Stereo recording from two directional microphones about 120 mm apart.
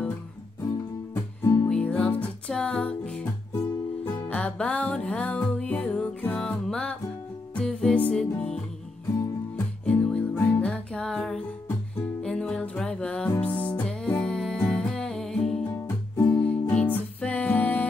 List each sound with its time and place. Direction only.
1.4 s music: 30° left (ahead or behind)
1.7 s music: 10° left (ahead or behind)
3.5 s music: 30° left (ahead or behind)
4.3 s music: 10° left (ahead or behind)
9.8 s music: 10° left (ahead or behind)
15.7 s music: 25° left (ahead or behind)
16.3 s music: 10° left (ahead or behind)